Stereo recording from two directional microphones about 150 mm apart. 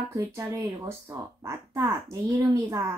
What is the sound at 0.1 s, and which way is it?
Speech, 15° right (ahead or behind).